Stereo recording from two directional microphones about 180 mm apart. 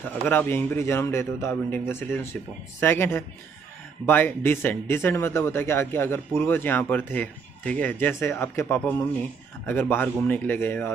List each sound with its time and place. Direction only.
0.0 s speech: 10° left (ahead or behind)